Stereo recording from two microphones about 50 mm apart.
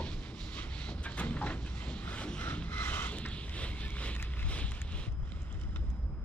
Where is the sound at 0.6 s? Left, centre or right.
Left.